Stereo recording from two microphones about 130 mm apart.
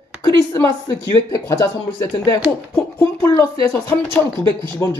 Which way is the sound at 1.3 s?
25° left (ahead or behind).